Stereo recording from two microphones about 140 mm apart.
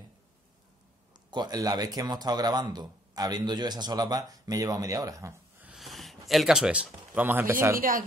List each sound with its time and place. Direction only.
1.1 s speech: 30° right (ahead or behind)
5.7 s speech: centre (ahead or behind); by 7.8 s 20° right (ahead or behind)